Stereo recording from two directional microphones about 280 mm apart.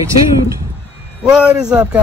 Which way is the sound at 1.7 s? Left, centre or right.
Centre.